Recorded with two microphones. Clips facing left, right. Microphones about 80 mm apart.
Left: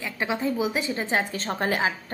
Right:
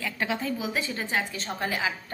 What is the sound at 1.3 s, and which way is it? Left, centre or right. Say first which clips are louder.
Speech: left 4 dB; left.